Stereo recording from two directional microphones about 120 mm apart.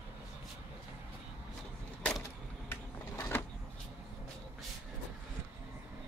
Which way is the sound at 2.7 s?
20° left (ahead or behind).